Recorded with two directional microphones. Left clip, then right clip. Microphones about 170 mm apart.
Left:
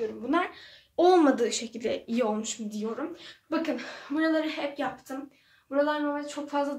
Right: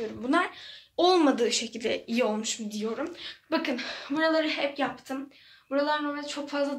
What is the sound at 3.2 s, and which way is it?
Speech, 40° right (ahead or behind).